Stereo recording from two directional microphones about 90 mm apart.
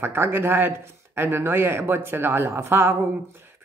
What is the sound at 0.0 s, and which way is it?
Speech, 25° right (ahead or behind).